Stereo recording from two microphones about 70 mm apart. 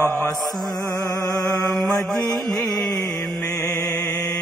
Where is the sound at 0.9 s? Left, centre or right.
Left.